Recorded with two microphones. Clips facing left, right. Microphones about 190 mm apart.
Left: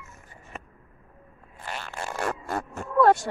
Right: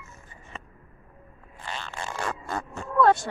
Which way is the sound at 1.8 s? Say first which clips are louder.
Left 3 dB; 10° left (ahead or behind).